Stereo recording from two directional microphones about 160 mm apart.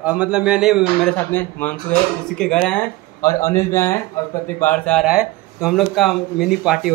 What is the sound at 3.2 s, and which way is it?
Speech, 20° left (ahead or behind).